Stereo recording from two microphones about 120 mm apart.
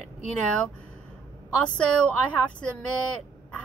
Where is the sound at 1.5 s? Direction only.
10° left (ahead or behind).